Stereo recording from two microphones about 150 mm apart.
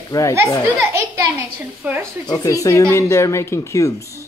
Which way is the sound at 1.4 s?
15° right (ahead or behind).